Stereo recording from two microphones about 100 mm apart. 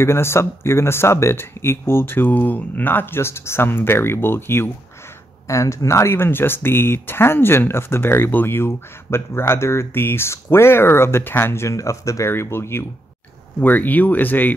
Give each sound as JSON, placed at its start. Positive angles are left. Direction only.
{"t": 0.0, "sound": "speech", "side_deg": 25}